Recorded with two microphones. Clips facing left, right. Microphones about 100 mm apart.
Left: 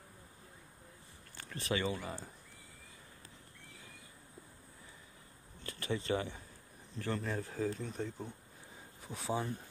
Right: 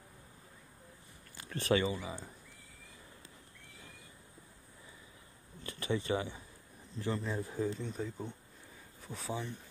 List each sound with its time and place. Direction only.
1.5 s speech: 40° right (ahead or behind)
1.9 s speech: centre (ahead or behind)
5.6 s a sound: 20° right (ahead or behind)
7.2 s speech: centre (ahead or behind)
9.0 s speech: 10° left (ahead or behind)
9.3 s speech: 40° left (ahead or behind)